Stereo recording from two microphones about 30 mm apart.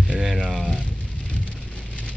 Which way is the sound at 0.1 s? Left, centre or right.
Centre.